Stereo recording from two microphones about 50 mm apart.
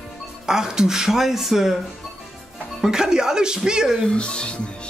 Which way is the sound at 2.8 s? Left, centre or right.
Centre.